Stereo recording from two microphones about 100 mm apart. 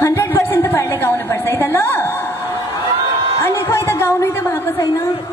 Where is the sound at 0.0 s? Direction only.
30° left (ahead or behind).